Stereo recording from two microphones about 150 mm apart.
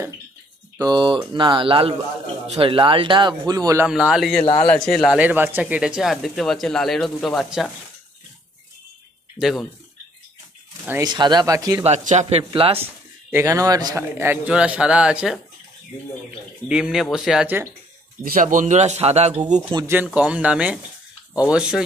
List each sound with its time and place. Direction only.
0.7 s speech: 30° right (ahead or behind)
3.8 s speech: 5° right (ahead or behind)
9.4 s speech: centre (ahead or behind)
10.9 s speech: 25° right (ahead or behind)
11.8 s speech: 50° right (ahead or behind)
12.8 s a man's voice: 15° right (ahead or behind)
16.6 s speech: 5° right (ahead or behind)
18.2 s speech: 65° right (ahead or behind); by 19.4 s 45° right (ahead or behind)
19.7 s speech: 35° right (ahead or behind)
20.2 s a man's voice: 10° right (ahead or behind)